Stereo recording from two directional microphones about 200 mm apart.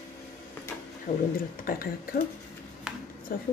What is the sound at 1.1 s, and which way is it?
A woman's voice, 40° left (ahead or behind).